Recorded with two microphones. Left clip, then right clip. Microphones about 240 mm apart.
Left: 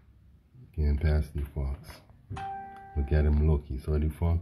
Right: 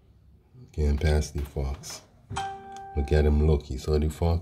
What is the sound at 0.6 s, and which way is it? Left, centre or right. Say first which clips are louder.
Speech: right 6 dB; centre.